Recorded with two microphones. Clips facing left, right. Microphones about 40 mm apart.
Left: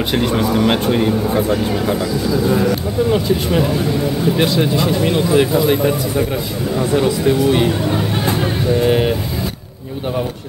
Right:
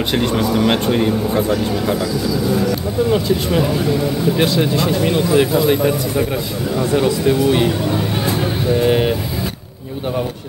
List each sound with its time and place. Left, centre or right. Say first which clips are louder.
0.1 s speech: left 1 dB; centre
2.2 s speech: left 4 dB; left
3.1 s speech: even; centre
8.4 s vehicle: even; centre